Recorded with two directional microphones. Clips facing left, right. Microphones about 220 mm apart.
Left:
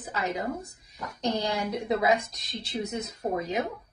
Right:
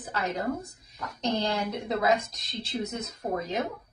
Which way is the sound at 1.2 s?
15° left (ahead or behind).